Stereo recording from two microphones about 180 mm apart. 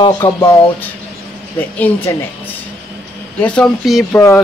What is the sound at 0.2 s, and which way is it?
Speech, 15° left (ahead or behind).